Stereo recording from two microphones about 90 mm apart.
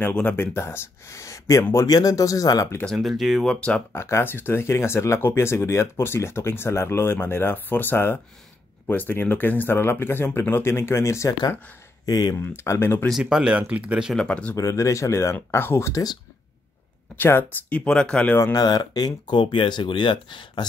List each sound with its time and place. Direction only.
0.1 s speech: 15° left (ahead or behind); by 1.9 s 35° left (ahead or behind)
1.9 s speech: 45° left (ahead or behind)
3.0 s speech: centre (ahead or behind)
3.9 s speech: 30° left (ahead or behind)
12.1 s speech: 50° left (ahead or behind)
12.4 s speech: 30° left (ahead or behind)
13.2 s speech: 10° right (ahead or behind)
14.1 s speech: 10° left (ahead or behind)
14.5 s speech: 35° left (ahead or behind)
17.2 s speech: 25° left (ahead or behind)
17.6 s speech: 10° left (ahead or behind)
18.4 s speech: 45° left (ahead or behind)
19.4 s speech: 75° left (ahead or behind)